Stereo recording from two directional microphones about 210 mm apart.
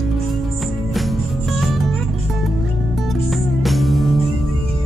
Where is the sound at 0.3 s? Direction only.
Centre (ahead or behind).